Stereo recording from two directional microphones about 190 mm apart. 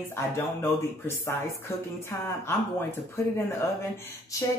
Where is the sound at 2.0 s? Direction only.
15° left (ahead or behind).